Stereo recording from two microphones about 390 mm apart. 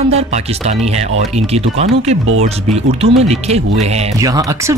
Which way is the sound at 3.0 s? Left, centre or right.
Centre.